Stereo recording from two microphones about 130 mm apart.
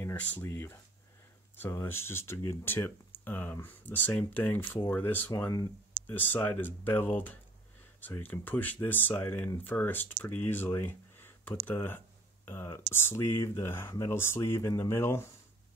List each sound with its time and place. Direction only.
0.0 s speech: 10° left (ahead or behind)